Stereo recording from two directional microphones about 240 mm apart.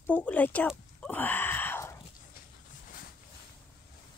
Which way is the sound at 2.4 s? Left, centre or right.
Left.